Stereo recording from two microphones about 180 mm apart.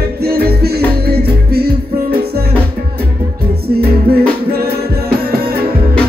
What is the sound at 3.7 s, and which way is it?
Music, 60° right (ahead or behind).